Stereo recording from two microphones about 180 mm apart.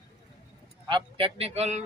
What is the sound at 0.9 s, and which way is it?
Speech, 30° right (ahead or behind).